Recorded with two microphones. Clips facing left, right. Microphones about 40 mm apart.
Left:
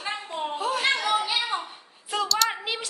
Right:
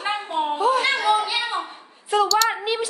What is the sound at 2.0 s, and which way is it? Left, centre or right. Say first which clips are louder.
Speech: right 6 dB; centre.